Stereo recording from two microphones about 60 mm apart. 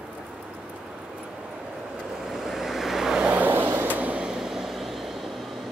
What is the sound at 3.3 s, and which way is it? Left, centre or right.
Vehicle, right.